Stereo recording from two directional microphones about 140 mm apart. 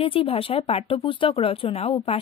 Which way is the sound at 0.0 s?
40° left (ahead or behind).